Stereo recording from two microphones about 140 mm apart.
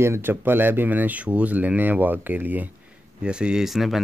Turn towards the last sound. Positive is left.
turn(degrees=0)  # may be behind; listen again after turning